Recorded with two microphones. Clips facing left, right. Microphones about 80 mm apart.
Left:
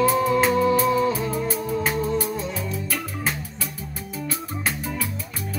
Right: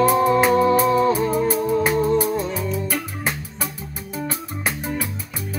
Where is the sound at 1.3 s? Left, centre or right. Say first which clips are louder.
Right 6 dB; centre.